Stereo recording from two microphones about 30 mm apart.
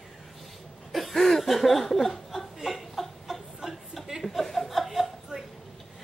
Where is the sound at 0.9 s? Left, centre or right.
Centre.